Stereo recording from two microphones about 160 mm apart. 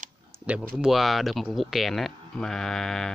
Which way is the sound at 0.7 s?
Centre (ahead or behind).